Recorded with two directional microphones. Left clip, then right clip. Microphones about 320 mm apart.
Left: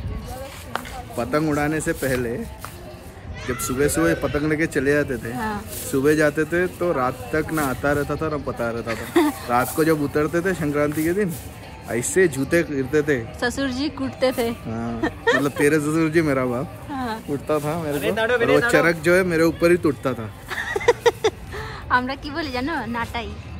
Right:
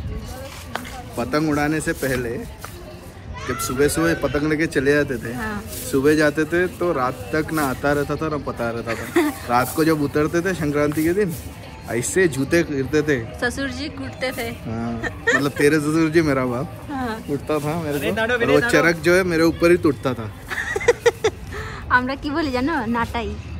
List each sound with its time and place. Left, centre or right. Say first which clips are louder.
1.1 s speech: right 1 dB; centre
3.4 s speech: right 2 dB; centre
12.4 s speech: right 1 dB; centre
15.4 s speech: right 1 dB; centre
17.9 s speech: left 1 dB; left
18.7 s speech: right 1 dB; centre
20.7 s a sound: even; centre
21.8 s speech: right 2 dB; centre